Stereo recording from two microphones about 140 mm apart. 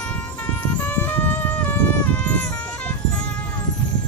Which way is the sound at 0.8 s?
15° left (ahead or behind).